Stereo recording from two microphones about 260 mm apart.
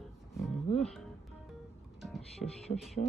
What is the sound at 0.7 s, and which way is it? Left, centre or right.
Speech, centre.